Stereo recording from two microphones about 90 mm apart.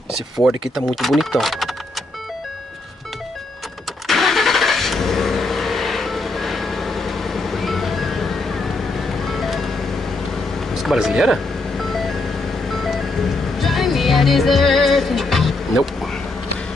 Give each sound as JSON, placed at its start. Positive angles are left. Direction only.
{"t": 0.1, "sound": "speech", "side_deg": 0}
{"t": 4.1, "sound": "vehicle", "side_deg": 0}
{"t": 9.2, "sound": "music", "side_deg": 0}
{"t": 10.7, "sound": "speech", "side_deg": 0}
{"t": 11.9, "sound": "vehicle", "side_deg": 0}
{"t": 12.6, "sound": "music", "side_deg": 0}